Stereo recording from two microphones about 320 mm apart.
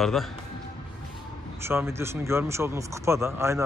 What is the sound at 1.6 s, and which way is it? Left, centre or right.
Speech, centre.